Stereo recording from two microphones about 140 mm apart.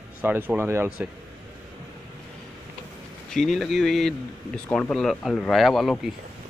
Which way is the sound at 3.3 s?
Centre (ahead or behind).